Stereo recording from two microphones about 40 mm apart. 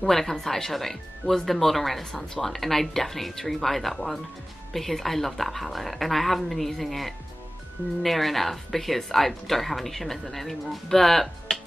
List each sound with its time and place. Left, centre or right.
0.0 s speech: centre